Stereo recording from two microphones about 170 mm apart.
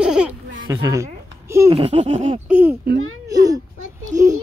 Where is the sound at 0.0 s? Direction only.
5° right (ahead or behind).